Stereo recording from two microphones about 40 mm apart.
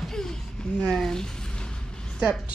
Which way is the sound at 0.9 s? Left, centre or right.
Centre.